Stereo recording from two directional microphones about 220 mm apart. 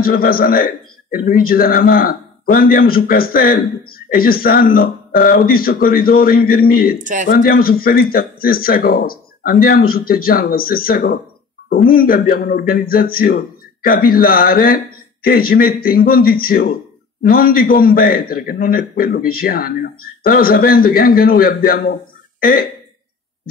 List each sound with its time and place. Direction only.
0.0 s a man's voice: 40° left (ahead or behind)
7.0 s speech: 35° right (ahead or behind)
7.2 s a man's voice: 40° left (ahead or behind)